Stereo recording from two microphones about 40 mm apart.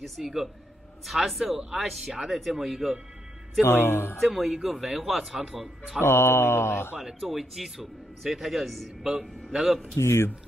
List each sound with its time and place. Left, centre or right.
0.2 s speech: centre
3.6 s speech: left
4.2 s speech: centre
5.9 s mantra: left
7.1 s speech: centre
9.6 s speech: centre
10.0 s mantra: left